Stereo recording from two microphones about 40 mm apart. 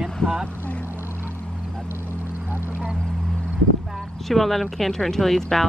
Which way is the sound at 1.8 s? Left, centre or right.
Right.